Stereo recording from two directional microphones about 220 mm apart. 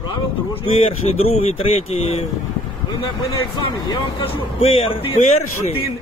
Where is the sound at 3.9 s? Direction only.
25° left (ahead or behind).